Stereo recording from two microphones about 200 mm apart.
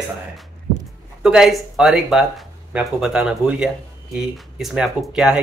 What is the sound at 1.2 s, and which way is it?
Speech, 5° right (ahead or behind).